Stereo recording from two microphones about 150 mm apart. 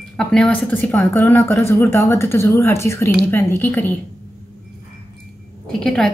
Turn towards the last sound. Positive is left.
turn(degrees=5)  # may be behind; listen again after turning